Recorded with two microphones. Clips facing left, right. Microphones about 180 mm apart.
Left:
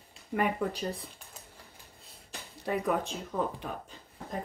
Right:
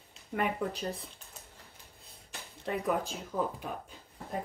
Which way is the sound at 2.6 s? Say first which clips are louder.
Left 2 dB; centre (ahead or behind).